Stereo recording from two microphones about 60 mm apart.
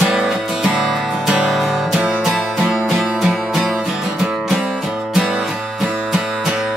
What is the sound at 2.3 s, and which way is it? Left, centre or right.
Music, centre.